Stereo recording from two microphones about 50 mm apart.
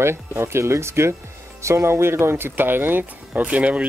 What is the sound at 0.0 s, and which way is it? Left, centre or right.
Speech, right.